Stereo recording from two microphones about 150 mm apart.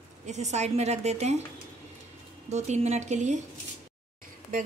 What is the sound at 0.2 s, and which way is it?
A woman's voice, 50° right (ahead or behind).